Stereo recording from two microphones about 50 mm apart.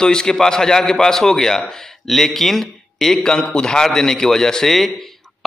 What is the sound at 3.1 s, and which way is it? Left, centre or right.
A man's voice, centre.